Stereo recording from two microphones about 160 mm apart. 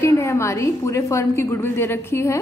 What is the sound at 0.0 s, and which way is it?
A woman's voice, 20° left (ahead or behind).